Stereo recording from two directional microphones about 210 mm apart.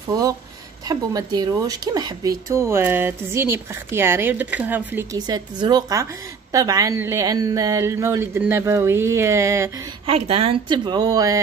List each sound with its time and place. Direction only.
0.8 s speech: 20° right (ahead or behind)
10.0 s speech: 25° right (ahead or behind)